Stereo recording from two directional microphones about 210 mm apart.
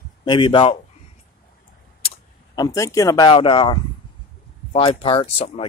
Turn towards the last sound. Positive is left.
turn(degrees=30)  # may be behind; listen again after turning